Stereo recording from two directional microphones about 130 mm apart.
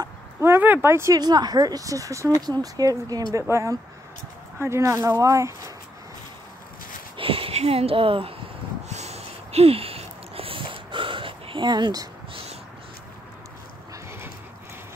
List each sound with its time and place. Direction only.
0.4 s speech: 15° right (ahead or behind)
7.2 s speech: 45° right (ahead or behind)
8.8 s a sound: 60° right (ahead or behind); by 12.1 s 30° right (ahead or behind)